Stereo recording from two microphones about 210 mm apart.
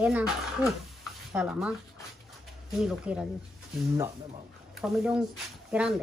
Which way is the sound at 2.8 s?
5° right (ahead or behind).